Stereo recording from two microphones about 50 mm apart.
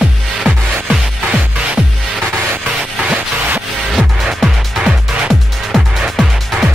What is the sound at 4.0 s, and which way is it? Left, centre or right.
Music, centre.